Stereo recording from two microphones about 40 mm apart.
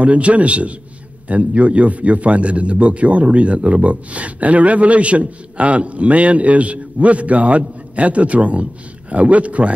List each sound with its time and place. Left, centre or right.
0.0 s a man's voice: right